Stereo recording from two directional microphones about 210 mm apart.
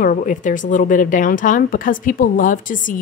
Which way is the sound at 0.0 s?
40° left (ahead or behind).